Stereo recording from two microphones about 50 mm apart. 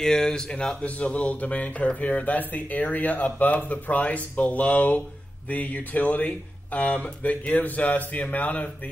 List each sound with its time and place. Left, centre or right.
0.0 s speech: centre
0.8 s speech: left